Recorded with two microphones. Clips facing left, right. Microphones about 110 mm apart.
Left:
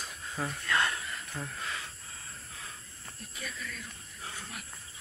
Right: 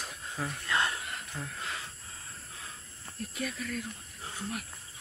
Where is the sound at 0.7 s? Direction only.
20° right (ahead or behind).